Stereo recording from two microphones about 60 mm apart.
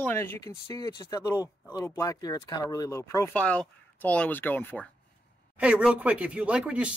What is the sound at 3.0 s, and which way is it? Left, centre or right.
Speech, left.